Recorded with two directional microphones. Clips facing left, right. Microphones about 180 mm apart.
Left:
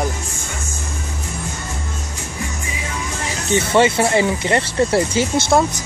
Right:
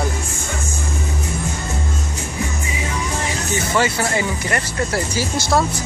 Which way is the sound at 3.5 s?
25° left (ahead or behind).